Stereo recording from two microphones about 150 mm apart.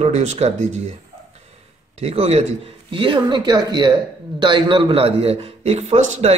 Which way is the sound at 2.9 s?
35° right (ahead or behind).